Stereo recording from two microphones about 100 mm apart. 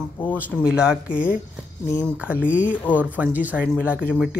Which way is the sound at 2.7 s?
15° left (ahead or behind).